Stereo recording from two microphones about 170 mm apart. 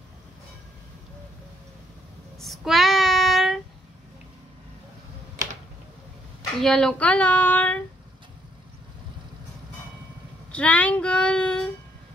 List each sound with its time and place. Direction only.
2.3 s child singing: centre (ahead or behind)
6.6 s child singing: 5° left (ahead or behind)
10.5 s speech: 10° left (ahead or behind)